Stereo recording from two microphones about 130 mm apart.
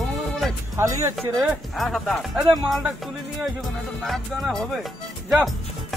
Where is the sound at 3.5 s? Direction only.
Centre (ahead or behind).